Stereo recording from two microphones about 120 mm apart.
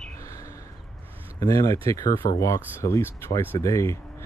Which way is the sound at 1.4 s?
30° left (ahead or behind).